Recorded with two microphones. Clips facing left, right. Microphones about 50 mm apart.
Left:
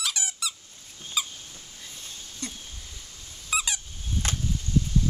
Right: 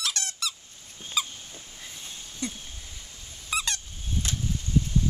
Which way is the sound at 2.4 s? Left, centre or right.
Centre.